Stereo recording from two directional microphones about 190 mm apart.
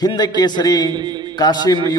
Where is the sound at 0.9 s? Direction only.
25° right (ahead or behind).